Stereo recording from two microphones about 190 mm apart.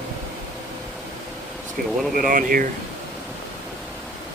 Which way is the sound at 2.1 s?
45° right (ahead or behind).